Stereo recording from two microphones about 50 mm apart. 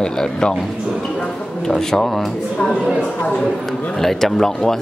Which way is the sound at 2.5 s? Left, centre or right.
Centre.